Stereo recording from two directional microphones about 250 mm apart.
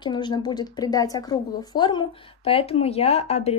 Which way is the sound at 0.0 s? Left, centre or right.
Centre.